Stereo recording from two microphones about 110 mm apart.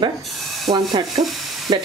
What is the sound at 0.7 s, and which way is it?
Speech, 65° right (ahead or behind).